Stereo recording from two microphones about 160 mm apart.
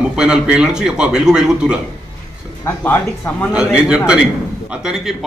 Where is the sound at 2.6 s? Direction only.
15° left (ahead or behind).